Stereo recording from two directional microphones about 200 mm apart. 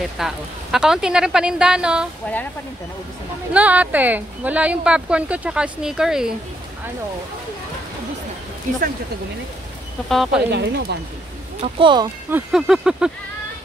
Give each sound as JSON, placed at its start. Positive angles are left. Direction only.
{"t": 0.2, "sound": "a woman's voice", "side_deg": 0}
{"t": 3.5, "sound": "speech", "side_deg": -5}
{"t": 10.0, "sound": "a woman's voice", "side_deg": 0}
{"t": 10.5, "sound": "speech", "side_deg": -55}
{"t": 11.6, "sound": "speech", "side_deg": -25}
{"t": 12.3, "sound": "a woman's voice", "side_deg": -5}